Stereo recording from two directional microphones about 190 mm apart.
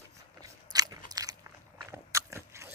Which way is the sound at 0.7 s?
20° right (ahead or behind).